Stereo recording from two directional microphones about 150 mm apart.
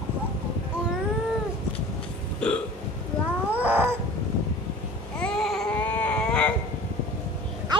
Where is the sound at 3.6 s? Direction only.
10° right (ahead or behind).